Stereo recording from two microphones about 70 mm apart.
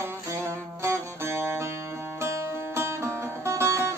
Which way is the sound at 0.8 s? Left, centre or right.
Right.